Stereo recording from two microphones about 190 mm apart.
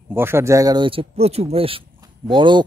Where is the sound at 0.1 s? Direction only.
10° right (ahead or behind).